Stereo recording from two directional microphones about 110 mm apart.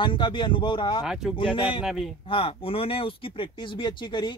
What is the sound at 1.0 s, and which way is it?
Speech, 5° right (ahead or behind).